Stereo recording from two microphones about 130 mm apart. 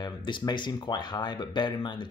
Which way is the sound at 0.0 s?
35° left (ahead or behind).